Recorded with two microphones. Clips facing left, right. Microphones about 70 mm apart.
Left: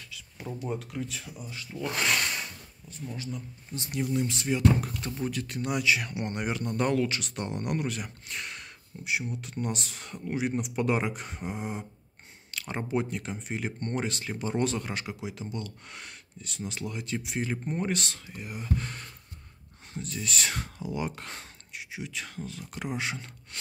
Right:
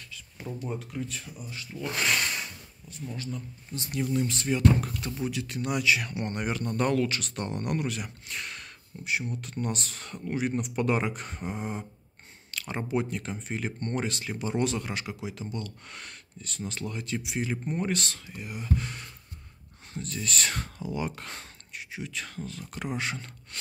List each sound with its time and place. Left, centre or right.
0.1 s a sound: left
0.7 s speech: left
1.7 s filing: left
3.1 s speech: centre
5.2 s speech: left
5.6 s speech: left; by 11.8 s centre
12.4 s speech: left
17.0 s speech: left
18.8 s speech: left
19.9 s speech: centre